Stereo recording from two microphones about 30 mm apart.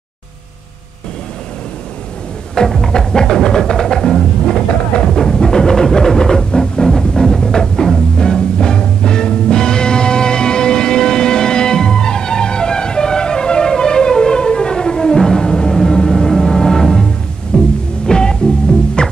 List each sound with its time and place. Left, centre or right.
2.8 s music: left
17.5 s music: left